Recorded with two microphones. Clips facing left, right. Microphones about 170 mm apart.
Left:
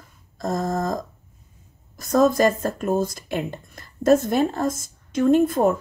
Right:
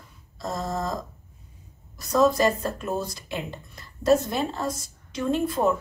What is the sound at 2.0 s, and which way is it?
Speech, 45° left (ahead or behind).